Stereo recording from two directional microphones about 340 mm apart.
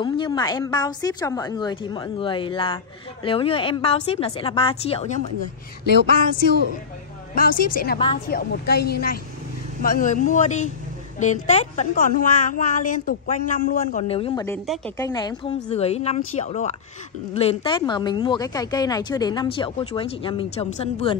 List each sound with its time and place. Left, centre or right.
0.0 s a woman's voice: centre
7.3 s a woman's voice: left